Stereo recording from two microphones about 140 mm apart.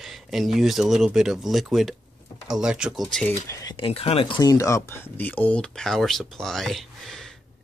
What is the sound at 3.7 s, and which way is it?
Speech, 40° left (ahead or behind).